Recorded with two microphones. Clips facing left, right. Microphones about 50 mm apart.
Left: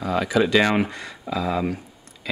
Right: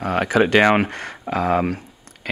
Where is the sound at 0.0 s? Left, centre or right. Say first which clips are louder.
Right 3 dB; right.